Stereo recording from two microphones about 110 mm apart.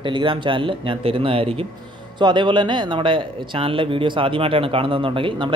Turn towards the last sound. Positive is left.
turn(degrees=-50)  # may be behind; listen again after turning